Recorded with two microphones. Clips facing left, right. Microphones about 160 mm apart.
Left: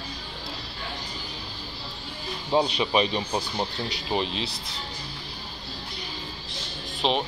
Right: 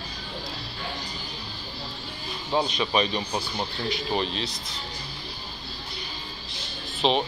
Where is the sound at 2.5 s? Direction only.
20° left (ahead or behind).